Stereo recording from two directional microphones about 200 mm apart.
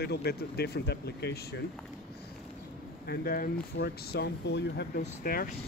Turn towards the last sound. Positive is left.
turn(degrees=45)  # may be behind; listen again after turning